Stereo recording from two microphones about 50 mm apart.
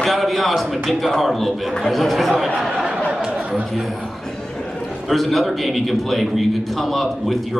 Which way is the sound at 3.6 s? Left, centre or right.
Centre.